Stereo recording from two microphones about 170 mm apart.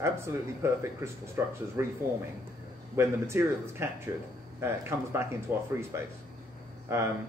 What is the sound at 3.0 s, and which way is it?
Speech, 15° right (ahead or behind).